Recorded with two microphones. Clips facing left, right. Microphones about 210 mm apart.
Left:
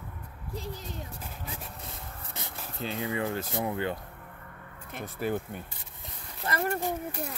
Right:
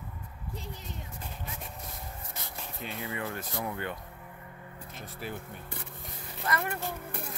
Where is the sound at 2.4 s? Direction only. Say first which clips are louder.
Left 5 dB; 25° left (ahead or behind).